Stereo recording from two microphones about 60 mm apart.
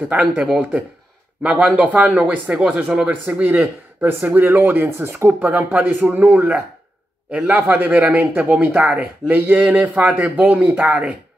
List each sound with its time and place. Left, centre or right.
0.1 s speech: centre
1.4 s speech: right
3.1 s speech: right
5.4 s speech: right
7.7 s speech: right